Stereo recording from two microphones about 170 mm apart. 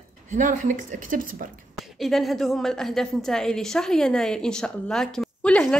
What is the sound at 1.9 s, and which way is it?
A woman's voice, centre (ahead or behind).